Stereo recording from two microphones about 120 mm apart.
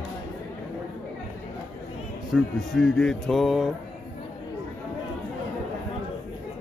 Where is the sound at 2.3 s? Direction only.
5° left (ahead or behind).